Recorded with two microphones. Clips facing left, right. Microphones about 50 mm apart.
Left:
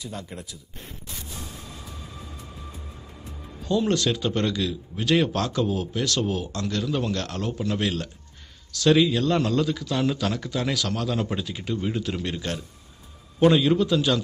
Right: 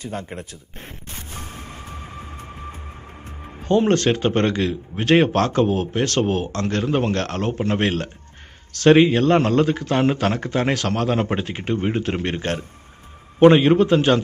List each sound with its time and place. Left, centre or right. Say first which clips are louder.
0.0 s a man's voice: right 6 dB; right